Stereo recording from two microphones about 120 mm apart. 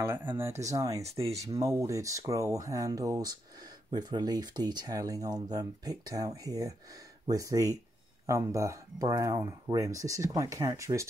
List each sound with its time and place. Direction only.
0.0 s speech: 20° right (ahead or behind)
1.2 s speech: 60° right (ahead or behind)
1.5 s speech: 30° right (ahead or behind)